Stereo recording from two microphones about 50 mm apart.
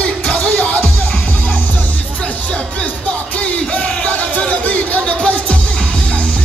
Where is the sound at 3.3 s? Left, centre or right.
Left.